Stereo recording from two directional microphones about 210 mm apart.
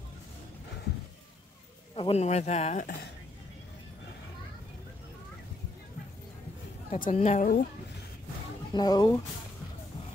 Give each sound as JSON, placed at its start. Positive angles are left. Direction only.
{"t": 2.0, "sound": "speech", "side_deg": 30}
{"t": 7.0, "sound": "speech", "side_deg": 35}
{"t": 8.7, "sound": "speech", "side_deg": 20}